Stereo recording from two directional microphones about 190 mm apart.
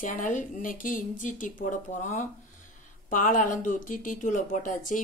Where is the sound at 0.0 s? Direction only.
45° left (ahead or behind).